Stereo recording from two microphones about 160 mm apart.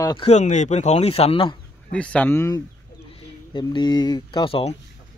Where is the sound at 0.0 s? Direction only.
25° left (ahead or behind).